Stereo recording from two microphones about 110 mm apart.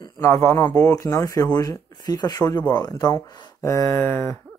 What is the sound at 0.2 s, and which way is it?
Speech, 25° left (ahead or behind).